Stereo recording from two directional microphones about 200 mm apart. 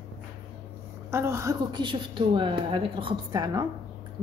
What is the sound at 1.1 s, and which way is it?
A woman's voice, 15° right (ahead or behind).